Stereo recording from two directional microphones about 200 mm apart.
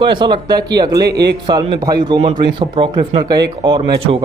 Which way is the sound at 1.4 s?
20° right (ahead or behind).